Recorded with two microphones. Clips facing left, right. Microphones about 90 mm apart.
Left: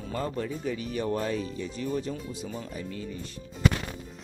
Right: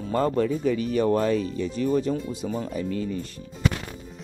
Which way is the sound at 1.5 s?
65° right (ahead or behind).